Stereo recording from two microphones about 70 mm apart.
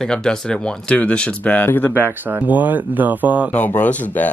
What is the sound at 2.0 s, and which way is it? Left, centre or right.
Speech, right.